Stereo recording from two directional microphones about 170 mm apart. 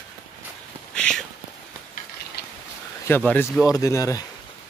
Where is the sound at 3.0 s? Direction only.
10° left (ahead or behind).